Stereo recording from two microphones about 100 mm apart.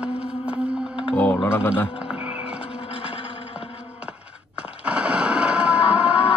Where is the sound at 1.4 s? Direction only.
25° left (ahead or behind).